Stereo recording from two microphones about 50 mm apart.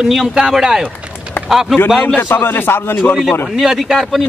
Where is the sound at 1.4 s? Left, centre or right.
Left.